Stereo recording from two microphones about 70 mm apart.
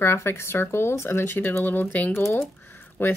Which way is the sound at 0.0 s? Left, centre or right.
Left.